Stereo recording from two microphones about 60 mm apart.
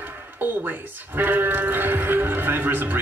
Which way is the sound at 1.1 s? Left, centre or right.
Right.